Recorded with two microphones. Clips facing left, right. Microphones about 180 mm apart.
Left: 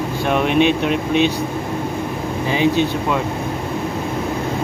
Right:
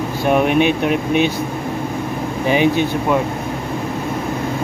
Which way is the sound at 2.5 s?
15° right (ahead or behind).